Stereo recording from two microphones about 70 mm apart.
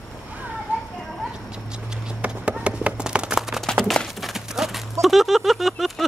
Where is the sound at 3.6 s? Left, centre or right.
Centre.